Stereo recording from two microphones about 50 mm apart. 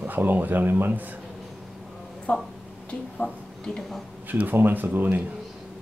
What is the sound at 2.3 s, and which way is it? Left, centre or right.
Speech, left.